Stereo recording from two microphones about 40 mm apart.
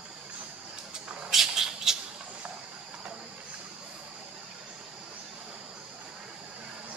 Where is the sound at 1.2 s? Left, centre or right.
Centre.